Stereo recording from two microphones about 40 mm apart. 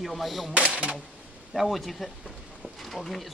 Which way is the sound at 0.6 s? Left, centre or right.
Right.